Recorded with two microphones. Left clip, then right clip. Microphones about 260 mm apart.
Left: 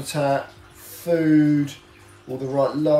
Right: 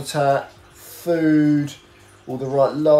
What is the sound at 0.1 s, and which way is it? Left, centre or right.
Speech, centre.